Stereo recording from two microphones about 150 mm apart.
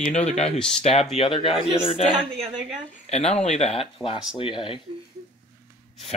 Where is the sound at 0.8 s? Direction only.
45° left (ahead or behind).